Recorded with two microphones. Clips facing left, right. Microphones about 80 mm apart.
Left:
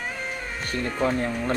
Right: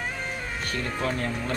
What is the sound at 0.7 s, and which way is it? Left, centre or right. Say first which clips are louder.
Speech: left 5 dB; left.